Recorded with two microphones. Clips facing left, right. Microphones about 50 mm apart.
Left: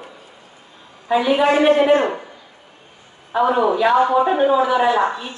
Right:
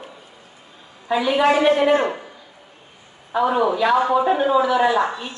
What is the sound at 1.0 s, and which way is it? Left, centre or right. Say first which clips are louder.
Speech: left 2 dB; centre.